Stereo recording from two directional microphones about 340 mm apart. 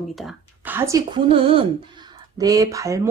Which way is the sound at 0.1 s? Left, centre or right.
Centre.